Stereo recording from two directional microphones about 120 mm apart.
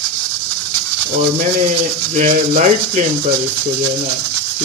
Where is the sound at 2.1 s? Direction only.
90° right.